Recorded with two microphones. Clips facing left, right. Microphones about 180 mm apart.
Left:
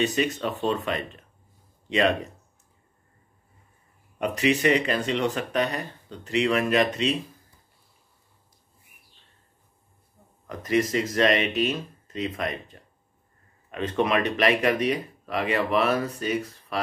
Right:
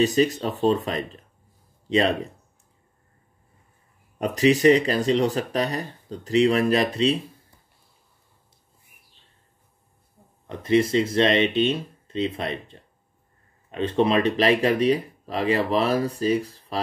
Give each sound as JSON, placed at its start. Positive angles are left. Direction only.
{"t": 0.0, "sound": "speech", "side_deg": -35}
{"t": 4.2, "sound": "speech", "side_deg": -35}
{"t": 10.4, "sound": "speech", "side_deg": -30}